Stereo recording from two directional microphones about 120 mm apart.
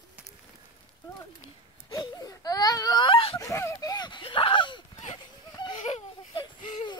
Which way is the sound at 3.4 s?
25° left (ahead or behind).